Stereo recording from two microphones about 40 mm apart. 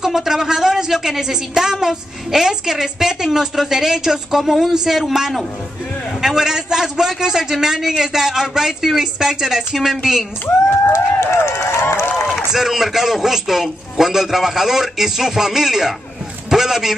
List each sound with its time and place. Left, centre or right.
0.0 s a woman's voice: centre
11.1 s speech: left
12.3 s a woman's voice: centre